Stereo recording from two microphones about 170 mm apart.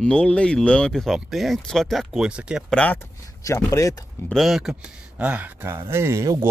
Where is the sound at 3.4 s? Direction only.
20° left (ahead or behind).